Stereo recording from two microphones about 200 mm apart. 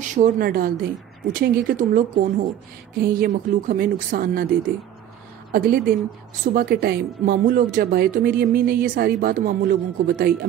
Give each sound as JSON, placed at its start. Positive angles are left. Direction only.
{"t": 0.0, "sound": "speech", "side_deg": -40}
{"t": 5.5, "sound": "speech", "side_deg": -45}